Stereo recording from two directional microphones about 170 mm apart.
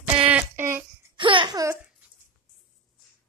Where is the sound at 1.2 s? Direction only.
30° right (ahead or behind).